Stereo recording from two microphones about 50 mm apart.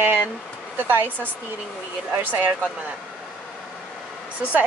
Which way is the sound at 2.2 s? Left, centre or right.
Right.